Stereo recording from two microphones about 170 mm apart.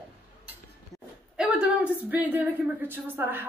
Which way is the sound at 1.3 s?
5° right (ahead or behind).